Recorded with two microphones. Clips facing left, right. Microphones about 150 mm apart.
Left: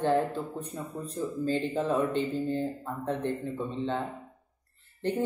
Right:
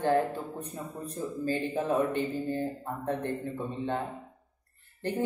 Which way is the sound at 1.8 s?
15° right (ahead or behind).